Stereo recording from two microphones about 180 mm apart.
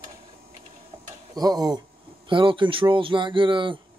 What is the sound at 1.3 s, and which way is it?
Speech, 20° right (ahead or behind).